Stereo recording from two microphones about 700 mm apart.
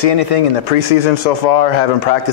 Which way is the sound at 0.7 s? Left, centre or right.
Left.